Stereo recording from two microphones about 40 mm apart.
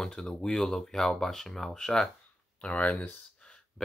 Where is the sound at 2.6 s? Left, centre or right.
Left.